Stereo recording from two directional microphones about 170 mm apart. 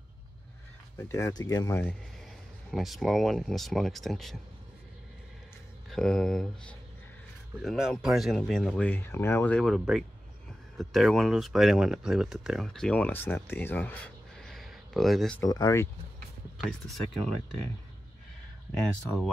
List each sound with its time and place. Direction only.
0.9 s speech: 15° left (ahead or behind)
2.7 s speech: centre (ahead or behind)
5.9 s speech: 5° left (ahead or behind)
15.4 s speech: 20° left (ahead or behind)
16.6 s speech: centre (ahead or behind)
18.8 s speech: 5° left (ahead or behind)